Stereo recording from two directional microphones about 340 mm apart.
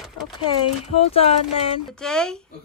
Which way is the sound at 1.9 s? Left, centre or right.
Centre.